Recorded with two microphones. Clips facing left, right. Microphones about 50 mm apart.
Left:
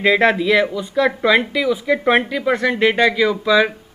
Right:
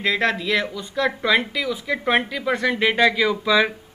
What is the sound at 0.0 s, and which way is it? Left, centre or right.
A man's voice, centre.